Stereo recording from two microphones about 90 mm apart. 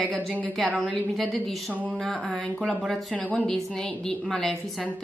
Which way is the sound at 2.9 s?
15° left (ahead or behind).